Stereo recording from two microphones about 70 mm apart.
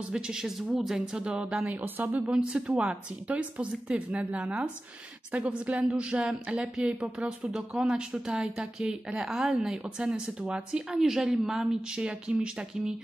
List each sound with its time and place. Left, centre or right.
0.1 s a woman's voice: centre